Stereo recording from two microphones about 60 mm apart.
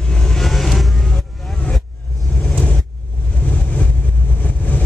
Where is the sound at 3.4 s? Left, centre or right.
Left.